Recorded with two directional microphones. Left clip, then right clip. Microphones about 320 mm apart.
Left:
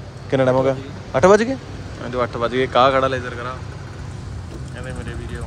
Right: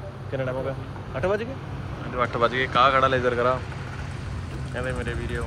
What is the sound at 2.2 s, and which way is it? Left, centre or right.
Speech, centre.